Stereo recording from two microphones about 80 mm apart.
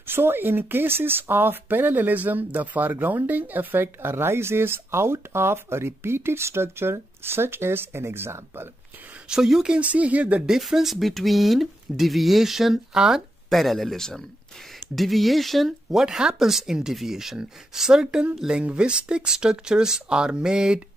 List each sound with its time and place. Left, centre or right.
0.0 s speech: right
9.3 s speech: centre
10.5 s speech: centre